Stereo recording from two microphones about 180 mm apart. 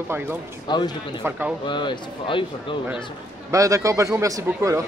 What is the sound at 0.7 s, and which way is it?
Speech, 25° left (ahead or behind).